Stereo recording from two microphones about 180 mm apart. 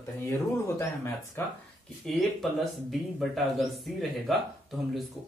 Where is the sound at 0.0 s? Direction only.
15° left (ahead or behind).